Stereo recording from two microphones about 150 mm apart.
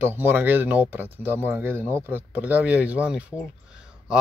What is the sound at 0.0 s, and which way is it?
Speech, 15° right (ahead or behind).